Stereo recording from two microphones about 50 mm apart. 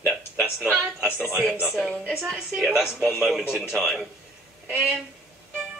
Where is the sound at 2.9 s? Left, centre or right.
Centre.